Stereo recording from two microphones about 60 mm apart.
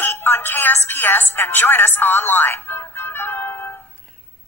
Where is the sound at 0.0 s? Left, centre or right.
Left.